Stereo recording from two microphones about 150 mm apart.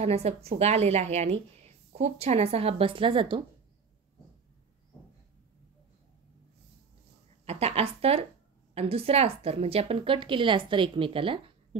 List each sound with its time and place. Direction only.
0.0 s a woman's voice: 45° right (ahead or behind)
7.4 s a woman's voice: 45° right (ahead or behind)